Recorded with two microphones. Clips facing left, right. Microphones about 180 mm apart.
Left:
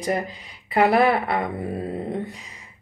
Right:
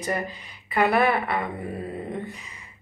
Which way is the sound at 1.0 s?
75° left (ahead or behind).